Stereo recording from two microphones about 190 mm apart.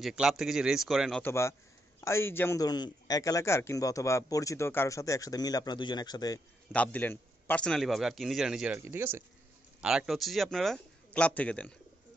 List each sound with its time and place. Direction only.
0.0 s a man's voice: centre (ahead or behind)
1.2 s a man's voice: 15° left (ahead or behind)
6.7 s a man's voice: 10° left (ahead or behind)